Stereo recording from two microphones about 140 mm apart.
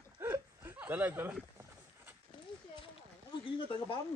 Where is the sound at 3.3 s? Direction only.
35° left (ahead or behind).